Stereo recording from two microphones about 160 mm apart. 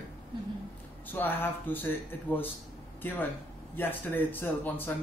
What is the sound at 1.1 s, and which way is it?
Speech, 10° left (ahead or behind).